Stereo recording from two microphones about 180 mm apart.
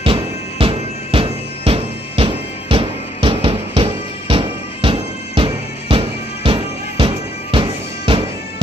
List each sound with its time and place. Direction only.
0.0 s music: 30° right (ahead or behind)